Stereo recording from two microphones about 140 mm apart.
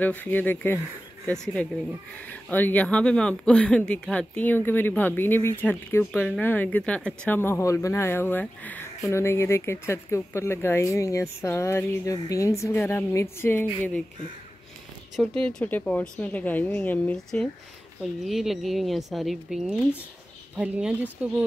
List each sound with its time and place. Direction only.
0.0 s speech: 10° left (ahead or behind)
15.2 s speech: 5° left (ahead or behind)